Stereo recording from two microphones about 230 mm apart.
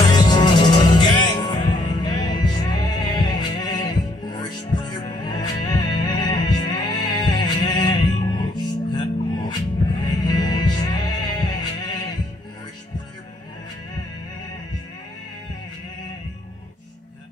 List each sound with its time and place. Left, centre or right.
0.0 s music: centre